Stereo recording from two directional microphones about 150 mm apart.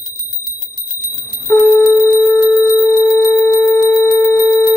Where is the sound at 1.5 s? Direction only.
10° left (ahead or behind).